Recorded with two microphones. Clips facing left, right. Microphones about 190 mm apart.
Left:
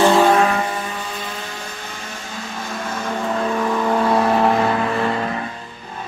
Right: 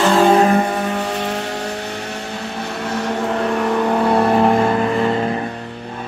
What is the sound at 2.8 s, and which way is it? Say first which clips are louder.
Vehicle: right 5 dB; 70° right (ahead or behind).